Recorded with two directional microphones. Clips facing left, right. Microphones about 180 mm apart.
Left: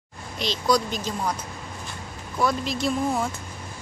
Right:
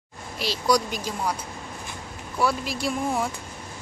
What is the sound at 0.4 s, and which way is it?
Speech, 10° right (ahead or behind).